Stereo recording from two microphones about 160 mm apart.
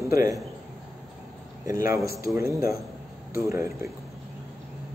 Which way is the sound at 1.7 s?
20° right (ahead or behind).